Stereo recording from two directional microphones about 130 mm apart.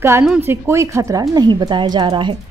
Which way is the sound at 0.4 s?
20° right (ahead or behind).